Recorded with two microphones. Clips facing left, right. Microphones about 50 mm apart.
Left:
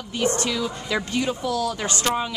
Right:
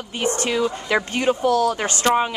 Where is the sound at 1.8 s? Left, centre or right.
Right.